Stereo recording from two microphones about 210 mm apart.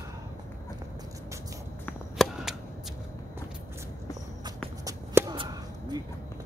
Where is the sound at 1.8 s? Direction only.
Centre (ahead or behind).